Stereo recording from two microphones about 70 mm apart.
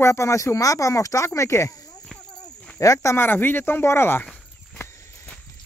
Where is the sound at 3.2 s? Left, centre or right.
Left.